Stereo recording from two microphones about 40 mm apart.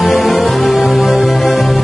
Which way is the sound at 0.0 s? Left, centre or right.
Centre.